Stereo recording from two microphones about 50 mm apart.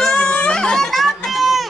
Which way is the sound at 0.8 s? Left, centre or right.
Centre.